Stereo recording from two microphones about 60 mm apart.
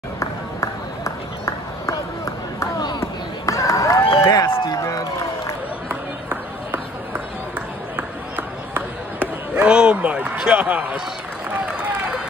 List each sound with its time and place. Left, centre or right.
0.2 s run: left
7.5 s run: right